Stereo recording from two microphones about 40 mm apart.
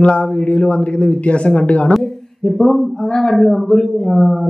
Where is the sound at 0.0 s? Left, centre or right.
Left.